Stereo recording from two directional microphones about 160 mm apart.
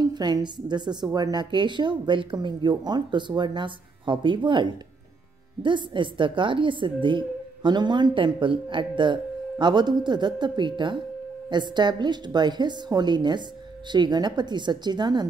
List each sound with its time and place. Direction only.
0.0 s a woman's voice: 25° right (ahead or behind)